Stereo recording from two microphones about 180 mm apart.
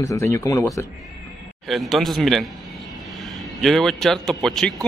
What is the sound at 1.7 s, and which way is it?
A man's voice, centre (ahead or behind).